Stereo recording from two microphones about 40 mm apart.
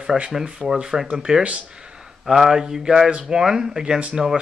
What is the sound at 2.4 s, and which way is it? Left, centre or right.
Mantra, centre.